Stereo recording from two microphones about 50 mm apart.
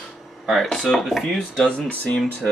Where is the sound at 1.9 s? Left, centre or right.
Left.